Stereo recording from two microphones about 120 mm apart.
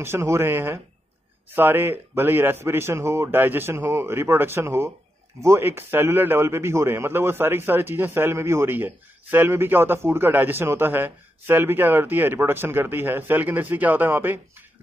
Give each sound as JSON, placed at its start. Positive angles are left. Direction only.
{"t": 0.0, "sound": "a man's voice", "side_deg": -20}